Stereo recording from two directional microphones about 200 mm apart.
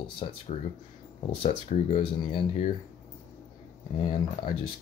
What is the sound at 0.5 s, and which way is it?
Speech, 35° left (ahead or behind).